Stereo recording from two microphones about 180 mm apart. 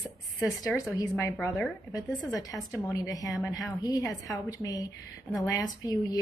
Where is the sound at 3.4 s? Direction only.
Centre (ahead or behind).